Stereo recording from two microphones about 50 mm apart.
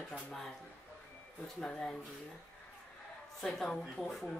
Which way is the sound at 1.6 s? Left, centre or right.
Left.